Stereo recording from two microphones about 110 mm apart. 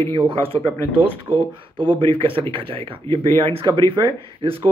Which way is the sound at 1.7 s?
50° right (ahead or behind).